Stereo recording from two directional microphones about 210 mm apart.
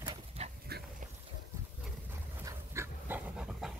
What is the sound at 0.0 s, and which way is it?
Dog, 20° right (ahead or behind).